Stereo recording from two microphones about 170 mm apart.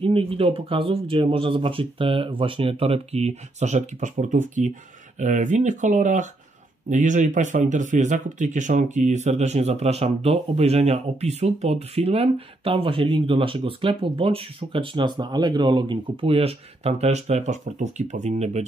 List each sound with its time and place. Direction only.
0.0 s speech: 30° right (ahead or behind)